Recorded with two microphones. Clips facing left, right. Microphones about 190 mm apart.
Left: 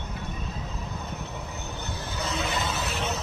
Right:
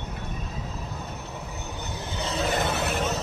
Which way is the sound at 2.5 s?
55° right (ahead or behind).